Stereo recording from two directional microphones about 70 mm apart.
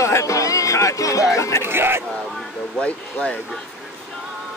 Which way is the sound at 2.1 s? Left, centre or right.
Centre.